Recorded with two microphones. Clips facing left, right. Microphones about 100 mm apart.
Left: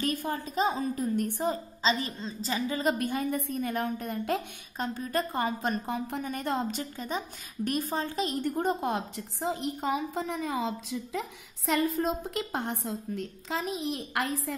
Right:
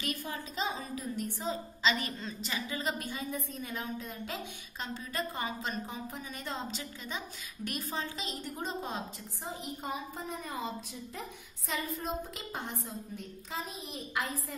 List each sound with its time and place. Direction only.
0.0 s a woman's voice: 45° left (ahead or behind)
1.8 s a woman's voice: 30° left (ahead or behind); by 14.5 s 85° left